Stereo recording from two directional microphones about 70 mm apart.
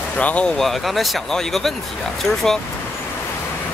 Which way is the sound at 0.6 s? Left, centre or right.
Centre.